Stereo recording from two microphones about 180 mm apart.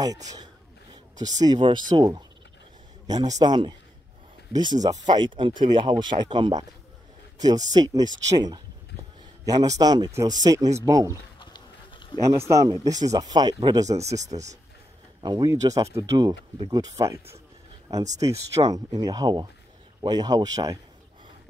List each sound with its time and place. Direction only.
1.1 s speech: 20° right (ahead or behind)
11.3 s a sound: 25° left (ahead or behind)
12.3 s speech: 15° right (ahead or behind)
14.2 s speech: 40° right (ahead or behind)
15.2 s speech: 20° right (ahead or behind)